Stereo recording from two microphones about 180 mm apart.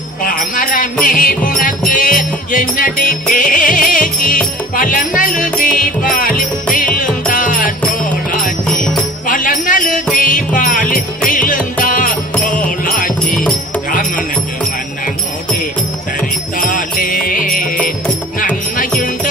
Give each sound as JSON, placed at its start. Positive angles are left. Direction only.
{"t": 0.2, "sound": "jingle bell", "side_deg": 50}
{"t": 1.0, "sound": "music", "side_deg": 50}
{"t": 9.3, "sound": "jingle bell", "side_deg": 50}
{"t": 10.2, "sound": "music", "side_deg": 45}
{"t": 13.3, "sound": "music", "side_deg": 5}
{"t": 16.5, "sound": "music", "side_deg": 50}